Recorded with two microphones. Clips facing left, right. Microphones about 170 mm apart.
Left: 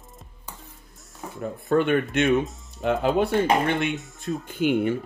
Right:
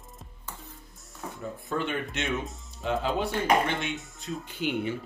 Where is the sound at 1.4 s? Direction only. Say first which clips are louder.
Left 10 dB; 60° left (ahead or behind).